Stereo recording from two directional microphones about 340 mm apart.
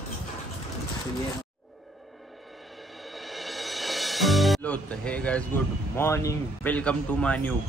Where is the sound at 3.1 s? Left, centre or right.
Centre.